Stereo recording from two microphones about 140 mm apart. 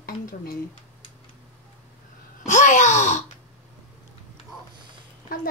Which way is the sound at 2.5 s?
60° left (ahead or behind).